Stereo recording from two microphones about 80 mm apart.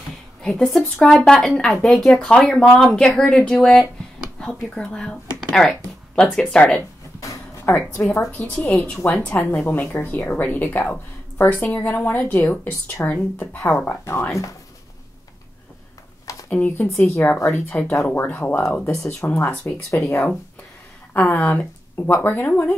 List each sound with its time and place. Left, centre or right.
0.4 s speech: centre
1.1 s speech: centre
7.2 s a sound: left
8.0 s speech: left
8.3 s speech: centre
9.3 s speech: left
16.4 s speech: left
19.9 s speech: left
21.1 s speech: centre